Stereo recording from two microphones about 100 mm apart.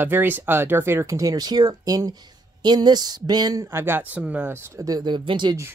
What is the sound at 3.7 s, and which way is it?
Speech, 25° right (ahead or behind).